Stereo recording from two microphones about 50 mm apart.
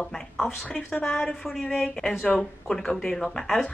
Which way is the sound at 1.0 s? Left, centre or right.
Centre.